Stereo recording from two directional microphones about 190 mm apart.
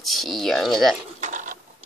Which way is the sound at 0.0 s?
Centre (ahead or behind).